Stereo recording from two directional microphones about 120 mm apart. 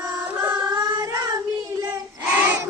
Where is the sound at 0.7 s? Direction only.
30° right (ahead or behind).